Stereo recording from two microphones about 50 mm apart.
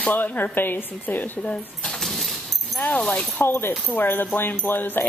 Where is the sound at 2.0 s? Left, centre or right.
Centre.